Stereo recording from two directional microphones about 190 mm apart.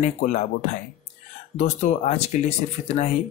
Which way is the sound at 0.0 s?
40° left (ahead or behind).